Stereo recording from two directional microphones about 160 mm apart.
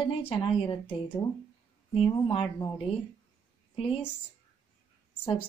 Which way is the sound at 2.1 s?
25° left (ahead or behind).